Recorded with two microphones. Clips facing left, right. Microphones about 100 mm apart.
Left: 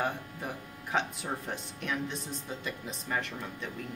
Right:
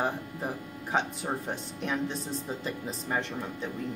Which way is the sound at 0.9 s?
30° right (ahead or behind).